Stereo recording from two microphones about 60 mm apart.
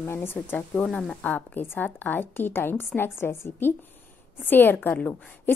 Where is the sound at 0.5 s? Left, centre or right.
Centre.